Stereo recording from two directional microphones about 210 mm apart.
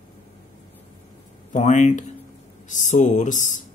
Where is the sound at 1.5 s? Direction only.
35° left (ahead or behind).